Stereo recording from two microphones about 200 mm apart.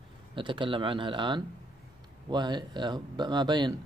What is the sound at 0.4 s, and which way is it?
Speech, 25° right (ahead or behind).